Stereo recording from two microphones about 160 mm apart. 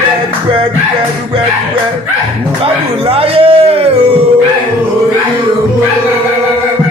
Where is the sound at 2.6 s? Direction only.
35° right (ahead or behind).